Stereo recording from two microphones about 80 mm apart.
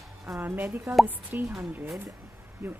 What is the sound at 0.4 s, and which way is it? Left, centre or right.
Speech, right.